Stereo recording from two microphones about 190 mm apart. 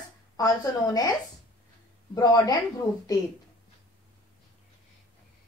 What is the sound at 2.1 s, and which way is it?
Speech, 20° left (ahead or behind).